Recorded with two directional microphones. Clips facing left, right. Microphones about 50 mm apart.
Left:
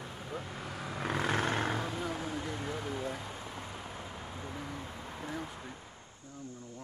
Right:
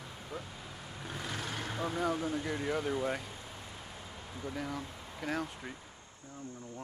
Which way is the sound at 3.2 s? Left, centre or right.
Left.